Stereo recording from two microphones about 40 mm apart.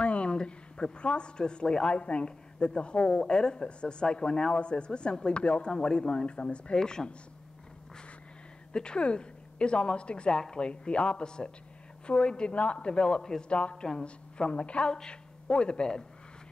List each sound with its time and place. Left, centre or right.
0.0 s a woman's voice: left
5.7 s a woman's voice: centre
8.7 s a woman's voice: left
13.5 s a woman's voice: left